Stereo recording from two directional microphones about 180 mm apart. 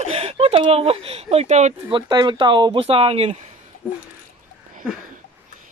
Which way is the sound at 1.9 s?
25° right (ahead or behind).